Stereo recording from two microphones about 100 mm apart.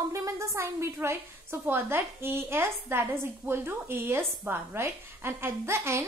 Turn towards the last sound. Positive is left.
turn(degrees=-25)  # may be behind; listen again after turning